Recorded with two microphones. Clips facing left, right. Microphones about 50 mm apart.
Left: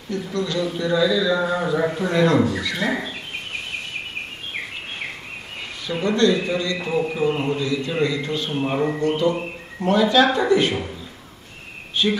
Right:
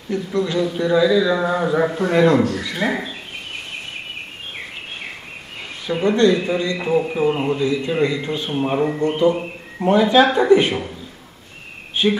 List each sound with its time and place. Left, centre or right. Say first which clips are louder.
0.1 s a man's voice: right 4 dB; right
2.0 s a man's voice: right 3 dB; right
2.6 s speech: right 1 dB; centre
5.9 s a man's voice: right 3 dB; right
9.3 s a sound: right 3 dB; centre
9.8 s a man's voice: right 3 dB; right
12.0 s a man's voice: right 3 dB; right